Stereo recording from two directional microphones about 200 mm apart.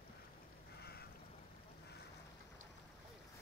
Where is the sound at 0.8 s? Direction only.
50° left (ahead or behind).